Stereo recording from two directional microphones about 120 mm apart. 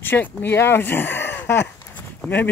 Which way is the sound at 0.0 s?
15° left (ahead or behind).